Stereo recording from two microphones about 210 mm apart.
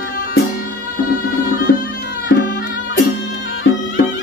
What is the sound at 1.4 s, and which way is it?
Music, 45° left (ahead or behind).